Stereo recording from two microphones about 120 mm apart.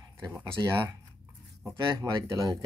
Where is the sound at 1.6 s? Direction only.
25° right (ahead or behind).